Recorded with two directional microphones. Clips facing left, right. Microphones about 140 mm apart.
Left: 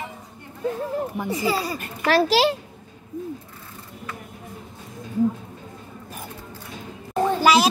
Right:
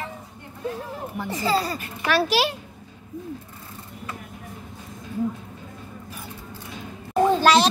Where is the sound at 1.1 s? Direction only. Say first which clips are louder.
Right 3 dB; 15° left (ahead or behind).